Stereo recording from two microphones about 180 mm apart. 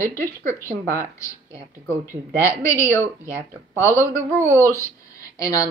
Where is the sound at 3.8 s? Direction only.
15° right (ahead or behind).